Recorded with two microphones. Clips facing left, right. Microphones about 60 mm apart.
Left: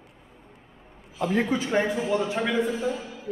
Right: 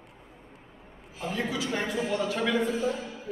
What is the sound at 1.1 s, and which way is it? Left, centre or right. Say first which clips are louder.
Speech: left 7 dB; left.